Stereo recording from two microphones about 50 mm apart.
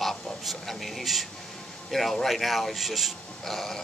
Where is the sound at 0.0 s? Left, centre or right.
Centre.